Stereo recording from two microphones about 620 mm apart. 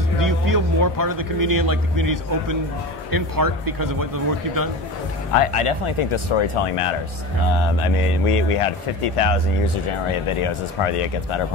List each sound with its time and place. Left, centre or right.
0.2 s a man's voice: right
5.3 s speech: left